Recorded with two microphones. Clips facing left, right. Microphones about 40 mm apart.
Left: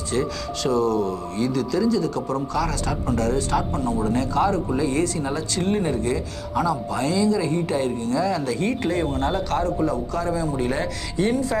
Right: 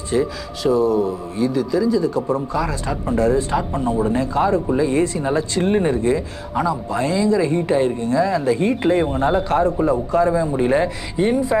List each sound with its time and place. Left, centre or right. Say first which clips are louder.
0.1 s speech: right 4 dB; centre
5.0 s speech: right 5 dB; right